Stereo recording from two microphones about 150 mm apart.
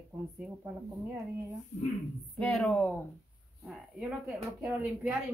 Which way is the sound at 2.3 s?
5° left (ahead or behind).